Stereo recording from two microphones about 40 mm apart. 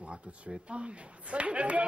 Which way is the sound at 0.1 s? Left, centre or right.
Right.